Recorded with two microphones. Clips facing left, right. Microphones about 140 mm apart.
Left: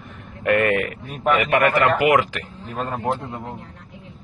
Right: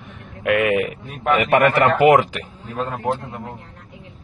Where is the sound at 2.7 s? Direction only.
10° left (ahead or behind).